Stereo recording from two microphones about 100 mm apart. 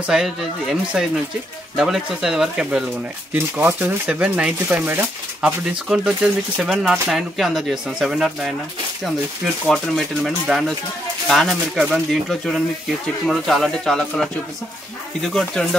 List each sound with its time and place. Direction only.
0.0 s speech: 5° right (ahead or behind)
3.3 s speech: 20° right (ahead or behind); by 8.5 s 5° right (ahead or behind)
9.7 s speech: centre (ahead or behind)